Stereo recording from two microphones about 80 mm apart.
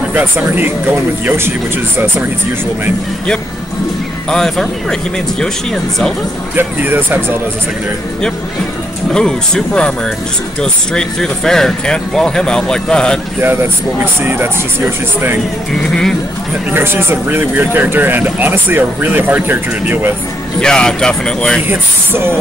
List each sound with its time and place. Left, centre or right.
0.1 s speech: right
4.3 s speech: centre
6.5 s speech: right
9.1 s speech: centre
14.2 s speech: right
15.8 s speech: centre
16.7 s speech: right
20.6 s speech: centre
21.6 s speech: right